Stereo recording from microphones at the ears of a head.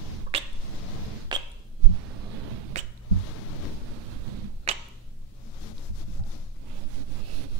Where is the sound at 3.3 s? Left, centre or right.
Left.